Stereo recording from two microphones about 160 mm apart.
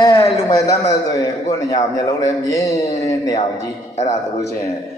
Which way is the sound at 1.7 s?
20° left (ahead or behind).